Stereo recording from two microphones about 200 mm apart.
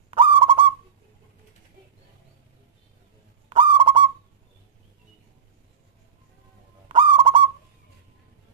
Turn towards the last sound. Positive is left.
turn(degrees=-25)  # may be behind; listen again after turning